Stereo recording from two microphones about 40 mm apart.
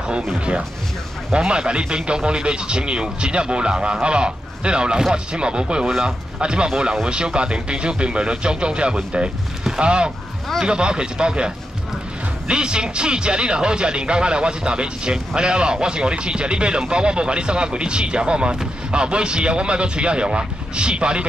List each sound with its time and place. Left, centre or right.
1.3 s speech: right
5.9 s speech: centre
6.4 s speech: right